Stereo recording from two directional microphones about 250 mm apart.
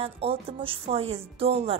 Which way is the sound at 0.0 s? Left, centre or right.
Right.